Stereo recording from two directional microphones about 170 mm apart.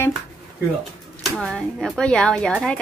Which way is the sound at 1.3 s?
5° left (ahead or behind).